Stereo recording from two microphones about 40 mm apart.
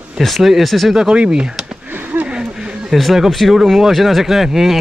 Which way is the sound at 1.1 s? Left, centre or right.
Right.